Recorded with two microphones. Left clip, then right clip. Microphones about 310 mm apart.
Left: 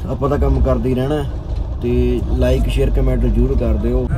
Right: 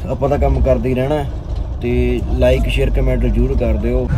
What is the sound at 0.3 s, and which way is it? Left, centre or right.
Speech, centre.